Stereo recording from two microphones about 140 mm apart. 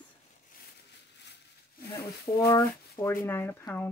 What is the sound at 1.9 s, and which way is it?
Speech, 25° left (ahead or behind).